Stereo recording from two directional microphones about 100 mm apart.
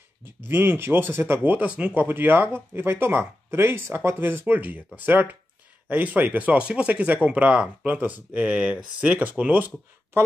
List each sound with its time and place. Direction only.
0.2 s speech: 20° right (ahead or behind)